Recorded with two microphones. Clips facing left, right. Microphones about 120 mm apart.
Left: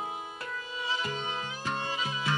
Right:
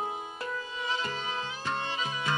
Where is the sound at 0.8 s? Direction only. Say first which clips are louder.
Even; 10° left (ahead or behind).